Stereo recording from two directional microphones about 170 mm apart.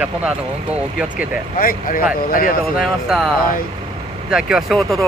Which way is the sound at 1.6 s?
60° left (ahead or behind).